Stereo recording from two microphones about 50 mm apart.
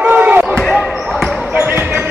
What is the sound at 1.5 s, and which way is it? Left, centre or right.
Basketball bounce, right.